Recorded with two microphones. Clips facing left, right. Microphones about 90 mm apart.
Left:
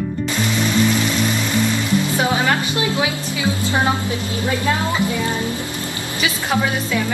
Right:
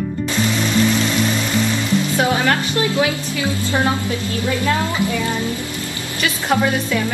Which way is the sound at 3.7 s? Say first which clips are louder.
Right 1 dB; 20° left (ahead or behind).